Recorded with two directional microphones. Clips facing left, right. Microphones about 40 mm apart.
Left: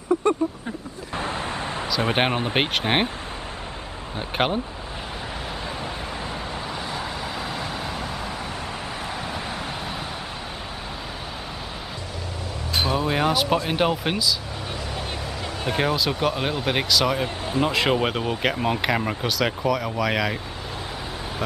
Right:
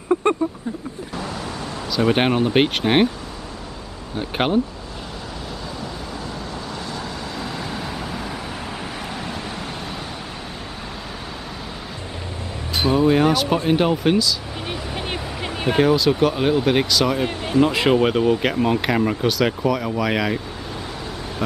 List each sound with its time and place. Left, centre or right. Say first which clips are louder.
0.1 s a sound: right 2 dB; right
2.1 s speech: right 4 dB; centre
4.2 s speech: right 2 dB; centre
6.9 s vehicle: even; centre
12.9 s speech: right 7 dB; centre
14.7 s vehicle: right 4 dB; right
15.8 s speech: right 7 dB; centre